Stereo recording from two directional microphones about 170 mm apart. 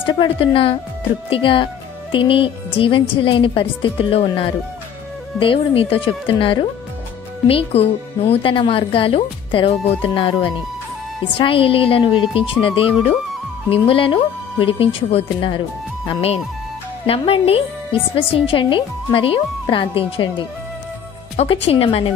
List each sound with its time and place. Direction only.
0.0 s a woman's voice: 30° left (ahead or behind)
21.6 s a woman's voice: 35° left (ahead or behind)